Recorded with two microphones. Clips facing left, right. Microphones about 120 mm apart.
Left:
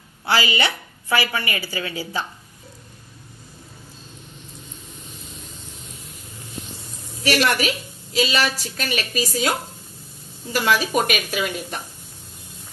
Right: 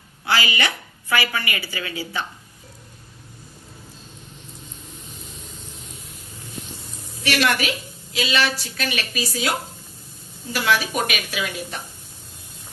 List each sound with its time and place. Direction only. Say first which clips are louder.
0.3 s a woman's voice: left 2 dB; 30° left (ahead or behind)
7.2 s a woman's voice: left 2 dB; 40° left (ahead or behind)
10.5 s a woman's voice: left 2 dB; 40° left (ahead or behind)